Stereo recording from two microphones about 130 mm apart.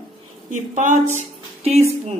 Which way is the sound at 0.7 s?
70° right (ahead or behind).